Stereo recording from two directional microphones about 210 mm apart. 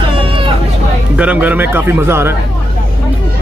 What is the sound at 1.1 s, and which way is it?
Speech, 5° right (ahead or behind).